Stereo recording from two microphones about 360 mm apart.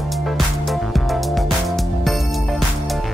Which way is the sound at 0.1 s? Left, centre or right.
Centre.